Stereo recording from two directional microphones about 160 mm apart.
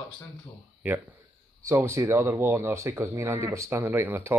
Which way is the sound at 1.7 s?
20° right (ahead or behind).